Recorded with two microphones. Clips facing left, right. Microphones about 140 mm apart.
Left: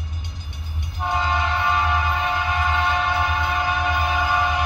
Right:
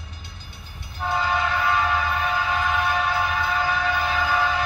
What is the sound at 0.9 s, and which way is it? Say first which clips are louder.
Train: left 1 dB; 20° left (ahead or behind).